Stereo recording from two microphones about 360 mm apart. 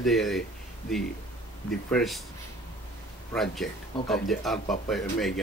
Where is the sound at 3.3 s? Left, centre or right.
Centre.